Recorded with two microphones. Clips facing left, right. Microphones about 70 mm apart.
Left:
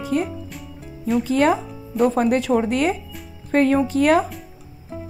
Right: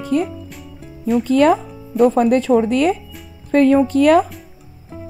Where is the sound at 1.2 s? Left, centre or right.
Right.